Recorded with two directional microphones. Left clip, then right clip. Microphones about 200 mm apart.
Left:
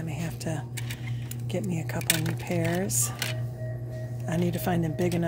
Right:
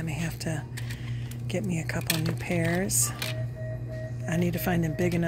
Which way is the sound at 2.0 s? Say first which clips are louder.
Left 4 dB; 20° left (ahead or behind).